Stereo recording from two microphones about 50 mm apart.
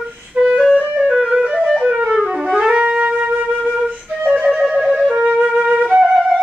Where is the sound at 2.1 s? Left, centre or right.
Centre.